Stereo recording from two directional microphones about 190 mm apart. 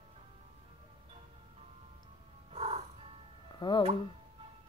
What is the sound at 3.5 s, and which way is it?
Speech, 25° left (ahead or behind).